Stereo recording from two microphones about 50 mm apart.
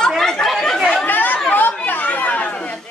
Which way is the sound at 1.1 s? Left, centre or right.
Left.